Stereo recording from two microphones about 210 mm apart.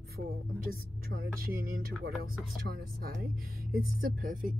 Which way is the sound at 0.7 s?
45° right (ahead or behind).